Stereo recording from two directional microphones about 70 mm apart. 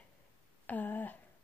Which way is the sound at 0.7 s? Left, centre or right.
Left.